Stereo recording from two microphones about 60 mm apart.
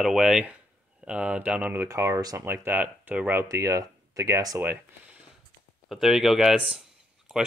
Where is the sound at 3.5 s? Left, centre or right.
Right.